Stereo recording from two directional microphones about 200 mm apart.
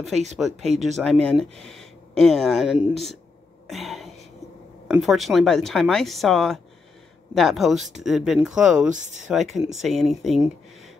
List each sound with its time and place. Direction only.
0.1 s speech: 35° right (ahead or behind)
0.4 s speech: centre (ahead or behind)
8.9 s speech: 35° right (ahead or behind)
9.3 s speech: centre (ahead or behind)